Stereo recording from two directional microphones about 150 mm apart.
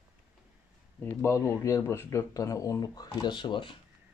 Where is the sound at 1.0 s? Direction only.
15° left (ahead or behind).